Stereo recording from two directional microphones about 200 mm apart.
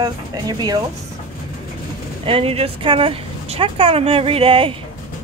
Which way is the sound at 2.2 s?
30° right (ahead or behind).